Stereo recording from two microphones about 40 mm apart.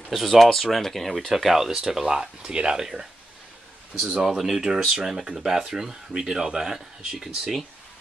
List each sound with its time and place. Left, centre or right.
0.1 s speech: centre
1.3 s speech: centre
4.1 s speech: centre